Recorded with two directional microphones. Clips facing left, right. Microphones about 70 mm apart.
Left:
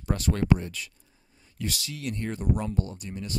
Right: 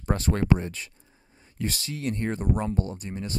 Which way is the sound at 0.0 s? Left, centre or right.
Right.